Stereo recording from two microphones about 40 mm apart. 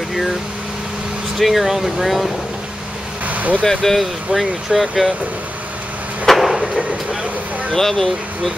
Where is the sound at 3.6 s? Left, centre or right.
Centre.